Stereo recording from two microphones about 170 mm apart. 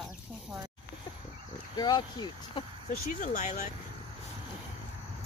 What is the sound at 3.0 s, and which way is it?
Speech, 55° left (ahead or behind).